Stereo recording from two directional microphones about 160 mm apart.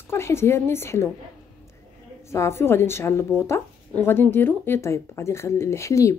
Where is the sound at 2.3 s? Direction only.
15° left (ahead or behind).